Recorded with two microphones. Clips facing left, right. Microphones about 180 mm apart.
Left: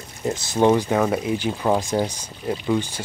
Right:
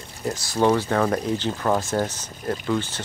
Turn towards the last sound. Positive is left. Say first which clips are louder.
# left 2 dB
turn(degrees=15)  # may be behind; listen again after turning